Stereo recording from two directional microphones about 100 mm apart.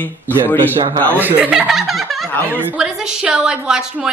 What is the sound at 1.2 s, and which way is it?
Speech, 15° right (ahead or behind).